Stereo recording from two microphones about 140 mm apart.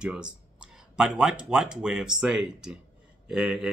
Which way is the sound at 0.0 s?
5° right (ahead or behind).